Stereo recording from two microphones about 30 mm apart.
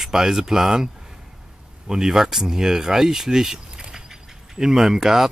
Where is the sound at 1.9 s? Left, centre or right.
Centre.